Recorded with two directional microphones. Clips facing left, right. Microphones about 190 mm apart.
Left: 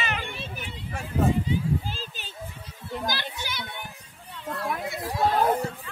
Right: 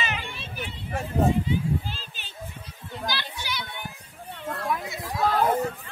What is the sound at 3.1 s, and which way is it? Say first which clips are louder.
Children playing: right 4 dB; 45° left (ahead or behind).